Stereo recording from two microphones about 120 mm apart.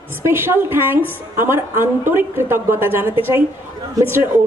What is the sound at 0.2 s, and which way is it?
A man's voice, 20° right (ahead or behind).